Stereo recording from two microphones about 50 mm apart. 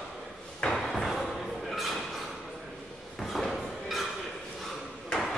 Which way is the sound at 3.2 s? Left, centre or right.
Centre.